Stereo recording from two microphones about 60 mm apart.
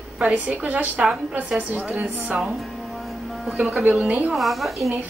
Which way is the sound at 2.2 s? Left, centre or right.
Centre.